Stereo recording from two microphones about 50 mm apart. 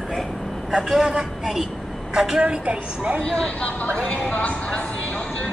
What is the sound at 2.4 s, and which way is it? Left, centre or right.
Speech, right.